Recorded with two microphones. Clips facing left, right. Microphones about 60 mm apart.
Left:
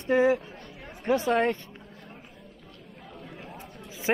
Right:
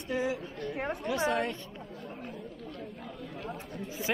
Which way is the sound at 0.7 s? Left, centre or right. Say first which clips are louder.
Right 11 dB; right.